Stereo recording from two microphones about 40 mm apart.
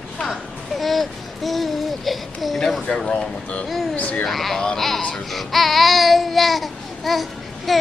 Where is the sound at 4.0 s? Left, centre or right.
Left.